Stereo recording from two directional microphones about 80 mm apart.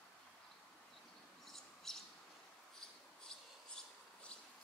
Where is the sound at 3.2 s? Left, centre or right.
Centre.